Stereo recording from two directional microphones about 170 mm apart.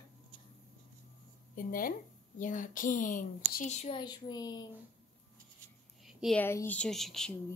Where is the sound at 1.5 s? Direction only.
55° left (ahead or behind).